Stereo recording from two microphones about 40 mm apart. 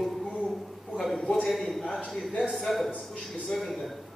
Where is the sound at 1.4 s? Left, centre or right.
Centre.